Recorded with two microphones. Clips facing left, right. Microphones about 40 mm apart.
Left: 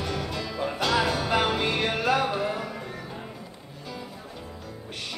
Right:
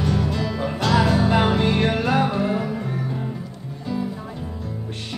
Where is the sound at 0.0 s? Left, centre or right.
Centre.